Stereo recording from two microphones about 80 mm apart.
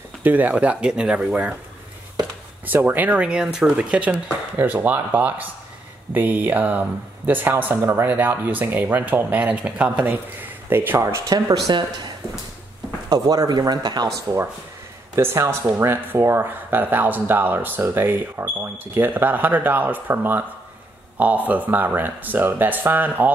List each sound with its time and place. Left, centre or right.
0.2 s speech: right
2.6 s speech: right
11.0 s speech: right
11.3 s speech: right
13.1 s speech: right
15.1 s speech: right